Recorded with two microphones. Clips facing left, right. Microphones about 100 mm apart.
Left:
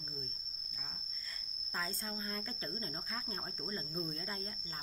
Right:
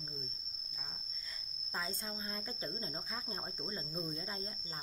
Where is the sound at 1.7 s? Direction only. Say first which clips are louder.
Left 1 dB; 20° right (ahead or behind).